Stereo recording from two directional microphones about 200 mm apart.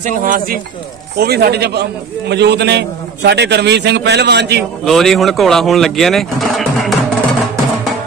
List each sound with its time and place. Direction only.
0.0 s a man's voice: 45° right (ahead or behind)
4.8 s speech: centre (ahead or behind)